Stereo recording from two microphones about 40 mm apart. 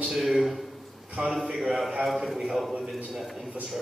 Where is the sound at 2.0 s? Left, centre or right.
Centre.